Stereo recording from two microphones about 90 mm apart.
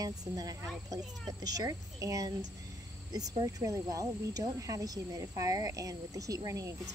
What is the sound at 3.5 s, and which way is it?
Speech, 40° right (ahead or behind).